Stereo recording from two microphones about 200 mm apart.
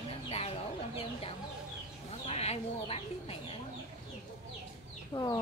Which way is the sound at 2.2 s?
30° left (ahead or behind).